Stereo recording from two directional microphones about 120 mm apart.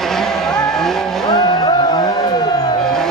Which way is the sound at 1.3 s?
35° left (ahead or behind).